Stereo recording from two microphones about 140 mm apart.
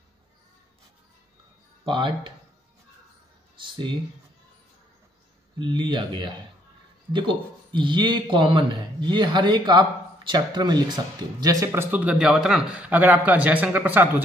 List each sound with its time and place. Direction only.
1.9 s speech: 35° right (ahead or behind)
3.6 s a sound: 35° right (ahead or behind)
5.6 s speech: 35° right (ahead or behind); by 14.2 s 10° right (ahead or behind)